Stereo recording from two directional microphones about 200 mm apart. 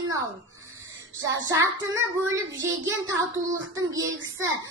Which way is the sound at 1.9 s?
15° right (ahead or behind).